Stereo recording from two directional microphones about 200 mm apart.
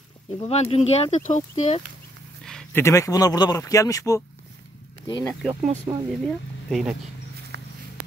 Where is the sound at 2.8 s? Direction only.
15° left (ahead or behind).